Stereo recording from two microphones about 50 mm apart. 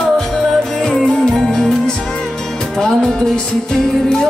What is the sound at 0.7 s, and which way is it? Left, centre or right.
Music, centre.